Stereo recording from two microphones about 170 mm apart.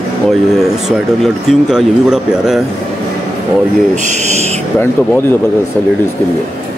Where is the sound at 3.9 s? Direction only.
45° right (ahead or behind).